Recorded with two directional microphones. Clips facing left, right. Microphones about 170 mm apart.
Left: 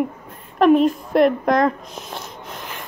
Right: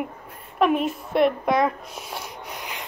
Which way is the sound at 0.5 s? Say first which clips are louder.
Left 7 dB; 5° right (ahead or behind).